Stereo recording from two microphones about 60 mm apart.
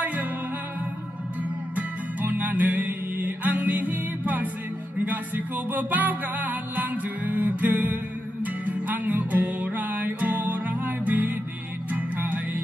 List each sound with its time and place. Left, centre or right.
0.0 s music: right
1.8 s music: right